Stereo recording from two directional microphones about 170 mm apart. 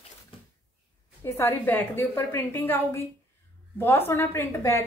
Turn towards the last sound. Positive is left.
turn(degrees=15)  # may be behind; listen again after turning